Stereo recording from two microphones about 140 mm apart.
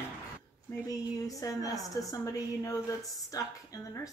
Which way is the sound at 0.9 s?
25° left (ahead or behind).